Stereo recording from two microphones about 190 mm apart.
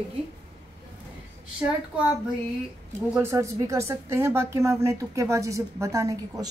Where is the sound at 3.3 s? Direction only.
15° right (ahead or behind).